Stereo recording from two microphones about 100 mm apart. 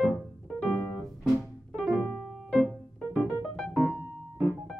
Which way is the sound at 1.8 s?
10° left (ahead or behind).